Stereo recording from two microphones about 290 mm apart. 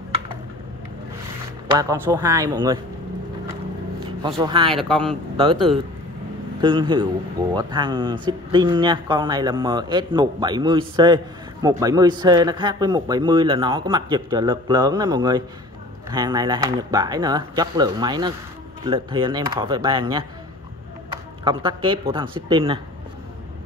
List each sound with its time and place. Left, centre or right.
1.8 s speech: centre
4.4 s speech: centre
4.7 s a man's voice: centre
6.6 s speech: centre
21.5 s speech: centre